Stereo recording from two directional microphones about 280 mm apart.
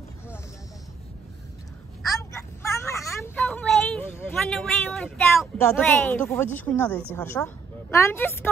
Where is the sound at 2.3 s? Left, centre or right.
Centre.